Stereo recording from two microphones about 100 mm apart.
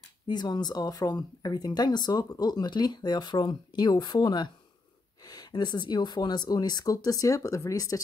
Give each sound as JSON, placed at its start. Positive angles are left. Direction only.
{"t": 0.3, "sound": "speech", "side_deg": 45}